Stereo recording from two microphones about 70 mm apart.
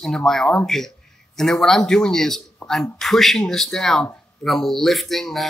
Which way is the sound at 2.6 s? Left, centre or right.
Centre.